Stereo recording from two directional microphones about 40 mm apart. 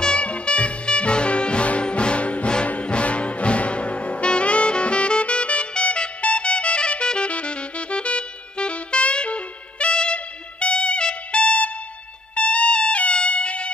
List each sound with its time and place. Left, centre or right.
0.0 s music: left